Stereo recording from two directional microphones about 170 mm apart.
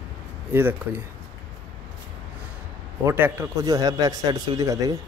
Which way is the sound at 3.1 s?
15° right (ahead or behind).